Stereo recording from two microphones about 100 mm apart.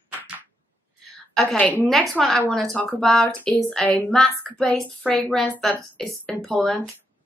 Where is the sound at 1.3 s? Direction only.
5° left (ahead or behind).